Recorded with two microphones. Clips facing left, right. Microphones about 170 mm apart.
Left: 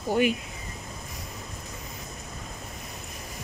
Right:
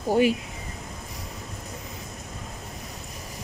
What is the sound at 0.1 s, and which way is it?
Speech, 35° right (ahead or behind).